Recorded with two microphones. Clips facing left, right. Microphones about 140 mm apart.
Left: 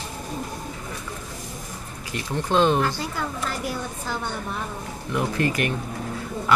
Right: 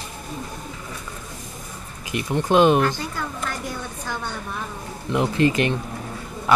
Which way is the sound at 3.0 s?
5° left (ahead or behind).